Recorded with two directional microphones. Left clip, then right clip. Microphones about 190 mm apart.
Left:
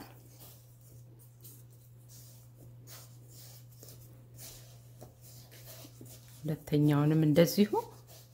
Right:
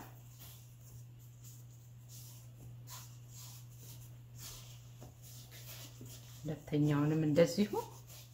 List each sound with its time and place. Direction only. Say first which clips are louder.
6.4 s speech: left 5 dB; 55° left (ahead or behind)